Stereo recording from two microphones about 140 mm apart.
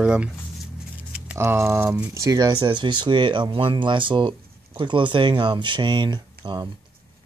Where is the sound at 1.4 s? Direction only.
15° right (ahead or behind).